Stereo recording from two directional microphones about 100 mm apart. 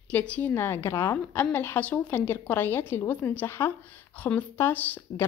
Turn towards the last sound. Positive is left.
turn(degrees=20)  # may be behind; listen again after turning